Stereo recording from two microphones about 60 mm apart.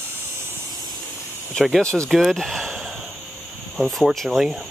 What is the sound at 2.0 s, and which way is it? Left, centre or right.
Speech, centre.